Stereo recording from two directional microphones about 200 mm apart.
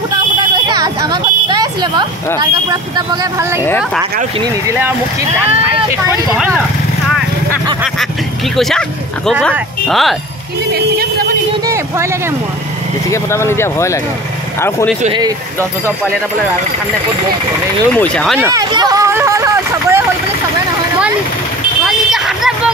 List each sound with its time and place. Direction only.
0.4 s speech: 20° right (ahead or behind)
3.6 s speech: 10° left (ahead or behind)
6.3 s speech: centre (ahead or behind)
8.5 s speech: centre (ahead or behind)
10.7 s speech: 50° right (ahead or behind)
11.6 s speech: 15° right (ahead or behind)
13.1 s speech: 15° left (ahead or behind)
15.0 s speech: 20° right (ahead or behind)
17.9 s speech: 5° left (ahead or behind)
18.4 s hubbub: 20° right (ahead or behind)
21.8 s bow-wow: centre (ahead or behind)